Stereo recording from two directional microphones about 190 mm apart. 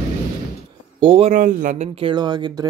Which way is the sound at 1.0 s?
30° right (ahead or behind).